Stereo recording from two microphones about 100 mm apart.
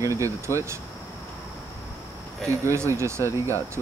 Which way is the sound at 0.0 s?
30° right (ahead or behind).